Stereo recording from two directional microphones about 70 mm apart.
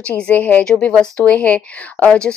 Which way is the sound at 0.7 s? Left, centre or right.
Centre.